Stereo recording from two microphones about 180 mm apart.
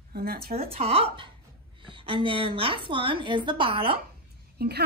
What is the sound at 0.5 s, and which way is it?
A woman's voice, 35° right (ahead or behind).